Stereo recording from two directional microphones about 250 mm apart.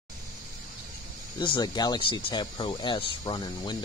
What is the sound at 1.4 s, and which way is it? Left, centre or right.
Speech, centre.